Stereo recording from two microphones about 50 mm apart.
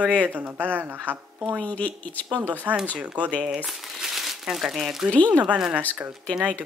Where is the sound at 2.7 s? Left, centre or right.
Right.